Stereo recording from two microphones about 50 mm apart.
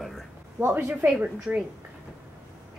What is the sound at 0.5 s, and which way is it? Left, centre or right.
Speech, right.